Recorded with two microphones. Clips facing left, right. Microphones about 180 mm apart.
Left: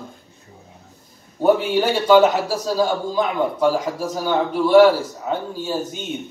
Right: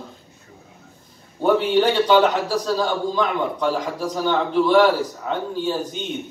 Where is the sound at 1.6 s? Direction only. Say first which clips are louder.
Even; 10° left (ahead or behind).